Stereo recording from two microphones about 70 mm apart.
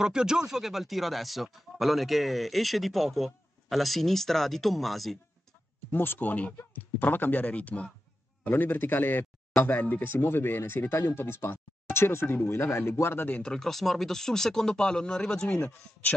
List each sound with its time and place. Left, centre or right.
0.0 s speech: centre
5.9 s speech: left
13.3 s speech: centre